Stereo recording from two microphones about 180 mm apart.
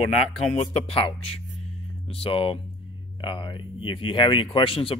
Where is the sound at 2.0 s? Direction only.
30° left (ahead or behind).